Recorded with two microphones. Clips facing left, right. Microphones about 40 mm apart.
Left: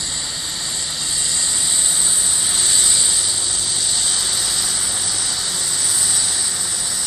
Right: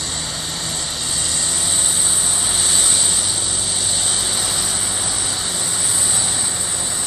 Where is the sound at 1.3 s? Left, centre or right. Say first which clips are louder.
Even; centre.